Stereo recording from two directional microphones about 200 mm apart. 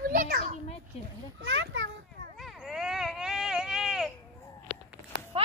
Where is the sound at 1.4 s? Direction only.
65° right (ahead or behind).